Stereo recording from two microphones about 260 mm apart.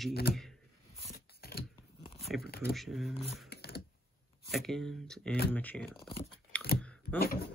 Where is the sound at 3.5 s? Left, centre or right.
Left.